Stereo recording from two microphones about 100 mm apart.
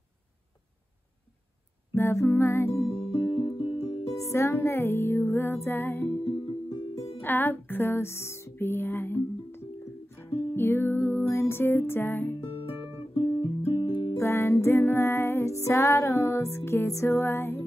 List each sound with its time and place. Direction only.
2.0 s music: 25° left (ahead or behind)
3.0 s music: 70° left (ahead or behind); by 4.0 s 50° left (ahead or behind)
4.3 s music: 25° left (ahead or behind)
6.2 s music: 55° left (ahead or behind)
7.2 s music: 20° left (ahead or behind)
13.4 s music: 60° left (ahead or behind)
14.1 s music: 25° left (ahead or behind)